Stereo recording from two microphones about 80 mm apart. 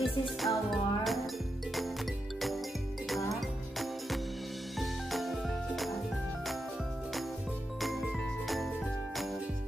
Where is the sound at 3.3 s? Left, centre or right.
Centre.